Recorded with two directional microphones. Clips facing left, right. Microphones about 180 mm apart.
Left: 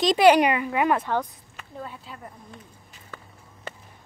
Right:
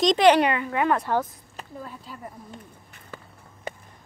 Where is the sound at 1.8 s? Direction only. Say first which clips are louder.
Left 1 dB; centre (ahead or behind).